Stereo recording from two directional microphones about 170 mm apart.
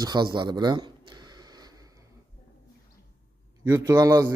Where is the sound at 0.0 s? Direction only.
25° right (ahead or behind).